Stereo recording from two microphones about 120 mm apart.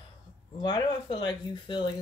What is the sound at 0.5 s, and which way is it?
Speech, 40° left (ahead or behind).